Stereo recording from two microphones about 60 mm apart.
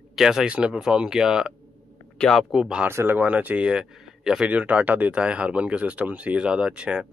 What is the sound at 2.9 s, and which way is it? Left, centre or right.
Speech, right.